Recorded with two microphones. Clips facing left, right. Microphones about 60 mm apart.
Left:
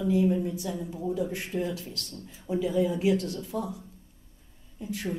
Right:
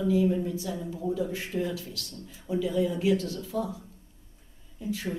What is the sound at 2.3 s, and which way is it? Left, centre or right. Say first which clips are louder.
A man's voice: even; centre.